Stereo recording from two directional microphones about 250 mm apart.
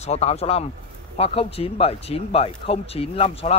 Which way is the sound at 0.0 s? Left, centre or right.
Left.